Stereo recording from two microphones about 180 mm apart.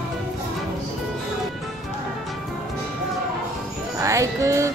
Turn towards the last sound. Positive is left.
turn(degrees=-15)  # may be behind; listen again after turning